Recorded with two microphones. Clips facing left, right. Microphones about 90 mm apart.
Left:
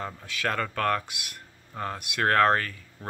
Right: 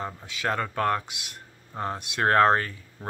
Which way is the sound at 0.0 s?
20° right (ahead or behind).